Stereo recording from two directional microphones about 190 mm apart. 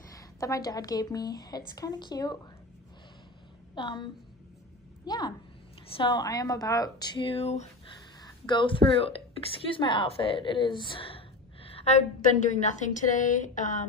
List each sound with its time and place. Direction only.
0.1 s a sound: 15° left (ahead or behind)
0.7 s a woman's voice: 20° left (ahead or behind)
3.7 s a woman's voice: 25° left (ahead or behind); by 13.8 s 40° left (ahead or behind)